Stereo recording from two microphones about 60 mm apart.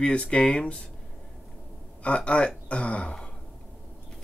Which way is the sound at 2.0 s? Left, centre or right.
Left.